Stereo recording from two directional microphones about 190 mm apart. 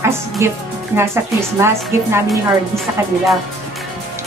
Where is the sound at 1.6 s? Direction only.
15° right (ahead or behind).